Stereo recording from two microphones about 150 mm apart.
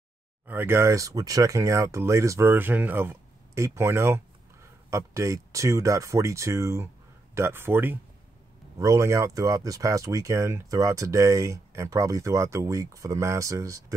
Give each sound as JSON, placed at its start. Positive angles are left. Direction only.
{"t": 0.5, "sound": "speech", "side_deg": -15}